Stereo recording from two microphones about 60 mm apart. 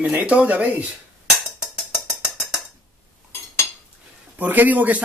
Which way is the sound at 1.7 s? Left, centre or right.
Centre.